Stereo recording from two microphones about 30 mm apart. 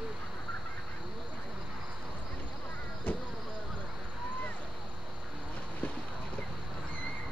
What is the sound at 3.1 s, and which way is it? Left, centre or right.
Vehicle, left.